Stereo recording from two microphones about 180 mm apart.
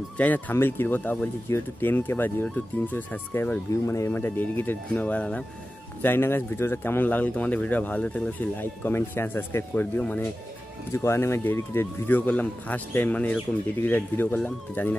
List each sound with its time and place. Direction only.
0.2 s speech: 10° left (ahead or behind)